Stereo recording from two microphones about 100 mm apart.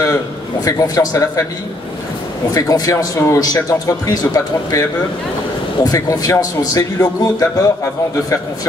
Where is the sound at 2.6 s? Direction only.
35° left (ahead or behind).